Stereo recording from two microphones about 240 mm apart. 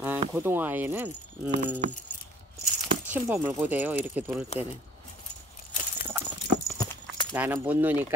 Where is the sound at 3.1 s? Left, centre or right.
Centre.